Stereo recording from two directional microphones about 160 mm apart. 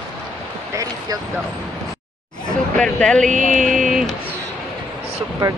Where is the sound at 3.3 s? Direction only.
55° right (ahead or behind).